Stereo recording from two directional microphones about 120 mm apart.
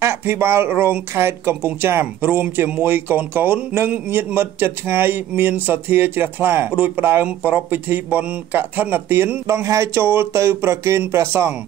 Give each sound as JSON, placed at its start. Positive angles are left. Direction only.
{"t": 0.0, "sound": "speech", "side_deg": -20}